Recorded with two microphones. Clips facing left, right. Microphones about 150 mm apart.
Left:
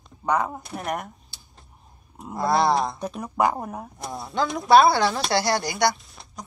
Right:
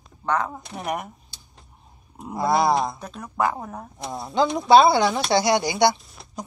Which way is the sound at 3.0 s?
15° left (ahead or behind).